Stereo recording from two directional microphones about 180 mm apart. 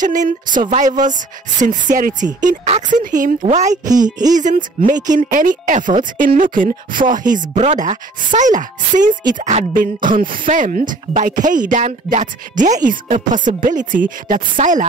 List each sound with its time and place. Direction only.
0.0 s speech: 45° right (ahead or behind)
4.0 s music: 20° right (ahead or behind)
4.4 s speech: 45° right (ahead or behind)
10.0 s speech: 50° right (ahead or behind)